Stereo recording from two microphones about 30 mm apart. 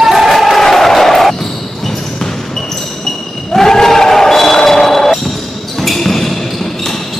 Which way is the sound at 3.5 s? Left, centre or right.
Centre.